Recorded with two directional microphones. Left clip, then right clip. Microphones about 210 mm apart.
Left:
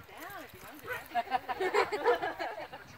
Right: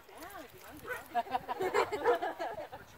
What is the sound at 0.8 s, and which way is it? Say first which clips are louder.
Speech: left 1 dB; 50° right (ahead or behind).